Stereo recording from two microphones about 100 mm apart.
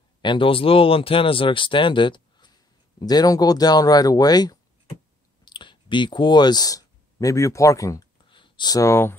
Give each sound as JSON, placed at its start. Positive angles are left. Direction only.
{"t": 0.2, "sound": "speech", "side_deg": 55}
{"t": 5.4, "sound": "speech", "side_deg": 50}
{"t": 8.3, "sound": "a sound", "side_deg": 55}